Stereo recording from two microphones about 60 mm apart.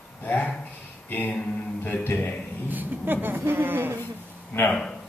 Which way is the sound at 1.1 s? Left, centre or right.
Left.